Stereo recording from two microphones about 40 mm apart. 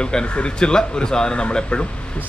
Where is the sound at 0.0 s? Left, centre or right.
Left.